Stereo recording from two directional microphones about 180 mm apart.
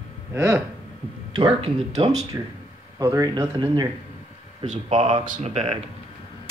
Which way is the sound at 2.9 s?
20° right (ahead or behind).